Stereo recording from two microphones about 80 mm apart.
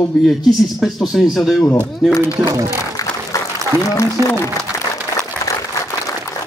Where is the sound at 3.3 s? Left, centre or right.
Left.